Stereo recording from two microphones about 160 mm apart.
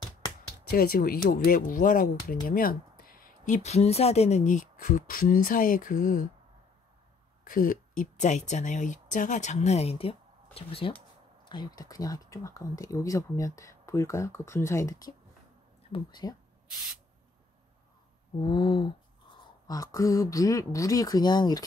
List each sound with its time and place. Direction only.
0.7 s speech: 70° left (ahead or behind)
7.4 s speech: 60° left (ahead or behind); by 16.3 s 25° left (ahead or behind)
18.4 s speech: 30° left (ahead or behind)